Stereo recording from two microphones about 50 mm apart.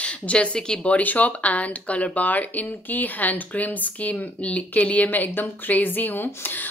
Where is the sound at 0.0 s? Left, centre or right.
Left.